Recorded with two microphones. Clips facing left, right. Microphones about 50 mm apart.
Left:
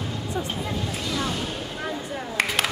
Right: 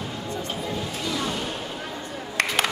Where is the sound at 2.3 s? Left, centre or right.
Centre.